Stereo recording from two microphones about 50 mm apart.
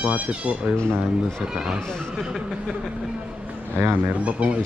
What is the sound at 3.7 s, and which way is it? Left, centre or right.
Speech, right.